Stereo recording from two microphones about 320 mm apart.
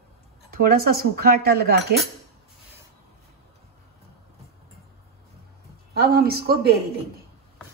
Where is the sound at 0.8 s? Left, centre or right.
Right.